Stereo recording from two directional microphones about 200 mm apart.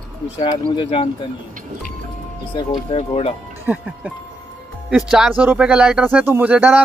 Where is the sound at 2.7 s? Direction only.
30° left (ahead or behind).